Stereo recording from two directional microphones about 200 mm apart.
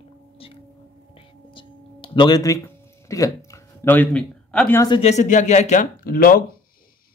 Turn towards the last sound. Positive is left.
turn(degrees=45)  # may be behind; listen again after turning